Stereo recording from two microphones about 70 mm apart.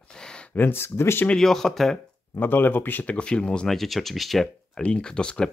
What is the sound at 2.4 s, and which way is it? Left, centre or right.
Speech, left.